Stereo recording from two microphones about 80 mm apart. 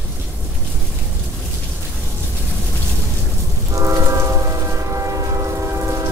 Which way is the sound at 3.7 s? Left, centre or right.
Right.